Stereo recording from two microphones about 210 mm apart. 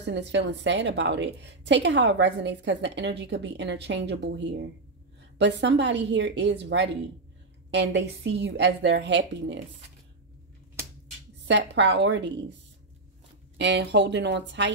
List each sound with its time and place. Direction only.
0.0 s a woman's voice: 55° right (ahead or behind)
11.4 s a woman's voice: 55° right (ahead or behind)
13.6 s a woman's voice: 55° right (ahead or behind)